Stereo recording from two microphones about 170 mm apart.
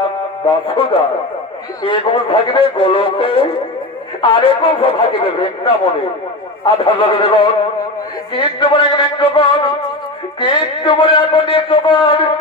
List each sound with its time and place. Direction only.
0.7 s a man's voice: 30° left (ahead or behind)